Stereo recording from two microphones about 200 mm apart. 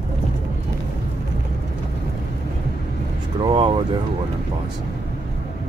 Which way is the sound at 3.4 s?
25° right (ahead or behind).